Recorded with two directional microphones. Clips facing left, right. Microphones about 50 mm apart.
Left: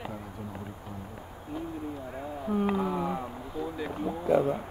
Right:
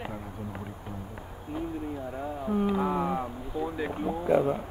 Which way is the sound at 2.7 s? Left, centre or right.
Centre.